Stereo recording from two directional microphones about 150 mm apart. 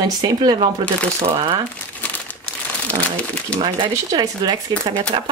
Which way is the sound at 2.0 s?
10° left (ahead or behind).